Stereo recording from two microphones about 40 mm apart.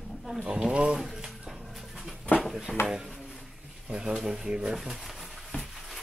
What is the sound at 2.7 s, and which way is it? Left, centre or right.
Speech, centre.